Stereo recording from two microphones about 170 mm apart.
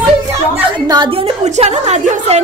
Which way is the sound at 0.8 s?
25° right (ahead or behind).